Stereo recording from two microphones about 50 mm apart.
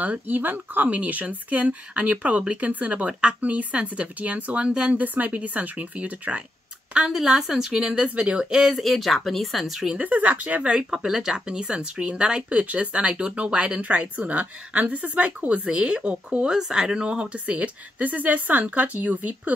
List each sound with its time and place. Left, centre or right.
0.3 s a woman's voice: right
5.0 s speech: right
6.9 s a sound: centre
7.2 s speech: centre
7.9 s a woman's voice: right
8.4 s speech: centre
8.8 s speech: centre
9.9 s speech: right
10.9 s a woman's voice: centre; by 19.5 s right